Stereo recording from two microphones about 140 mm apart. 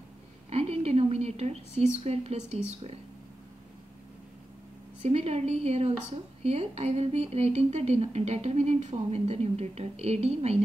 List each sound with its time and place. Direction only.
0.5 s a woman's voice: 50° right (ahead or behind)
5.0 s speech: 50° right (ahead or behind)